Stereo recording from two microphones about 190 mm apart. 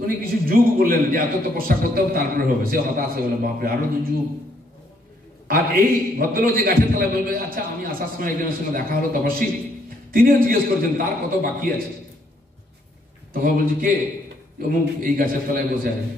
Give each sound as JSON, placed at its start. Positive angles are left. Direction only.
{"t": 0.0, "sound": "a man's voice", "side_deg": -50}
{"t": 5.5, "sound": "a man's voice", "side_deg": -50}
{"t": 13.3, "sound": "a man's voice", "side_deg": -45}